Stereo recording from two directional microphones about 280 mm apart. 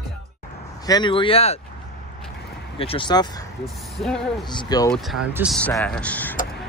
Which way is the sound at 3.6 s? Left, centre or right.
Centre.